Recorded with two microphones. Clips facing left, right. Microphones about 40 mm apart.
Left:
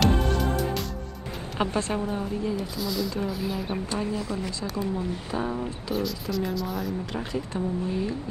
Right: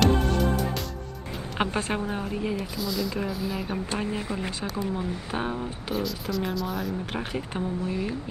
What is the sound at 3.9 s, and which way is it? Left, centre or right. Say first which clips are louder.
Speech: left 1 dB; right.